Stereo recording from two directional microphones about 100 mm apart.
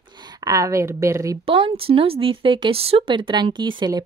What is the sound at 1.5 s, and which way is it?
A woman's voice, 65° right (ahead or behind).